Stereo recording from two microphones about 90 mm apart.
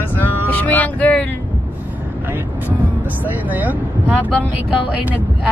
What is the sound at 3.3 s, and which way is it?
Speech, 20° right (ahead or behind).